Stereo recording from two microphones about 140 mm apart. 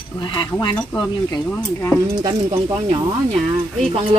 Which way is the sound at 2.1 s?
30° right (ahead or behind).